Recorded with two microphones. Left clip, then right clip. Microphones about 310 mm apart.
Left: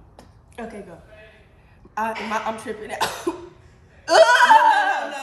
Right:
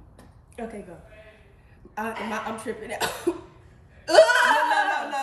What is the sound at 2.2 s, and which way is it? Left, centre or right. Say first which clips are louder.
Speech: left 5 dB; centre.